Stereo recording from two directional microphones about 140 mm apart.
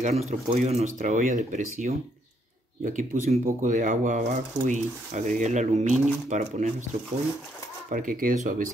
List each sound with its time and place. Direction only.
0.0 s speech: 50° right (ahead or behind)
0.9 s speech: 65° right (ahead or behind)
7.9 s speech: 80° right